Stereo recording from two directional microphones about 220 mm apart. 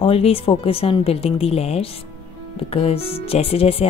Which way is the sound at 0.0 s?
25° left (ahead or behind).